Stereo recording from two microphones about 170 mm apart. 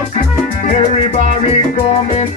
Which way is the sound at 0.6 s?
45° left (ahead or behind).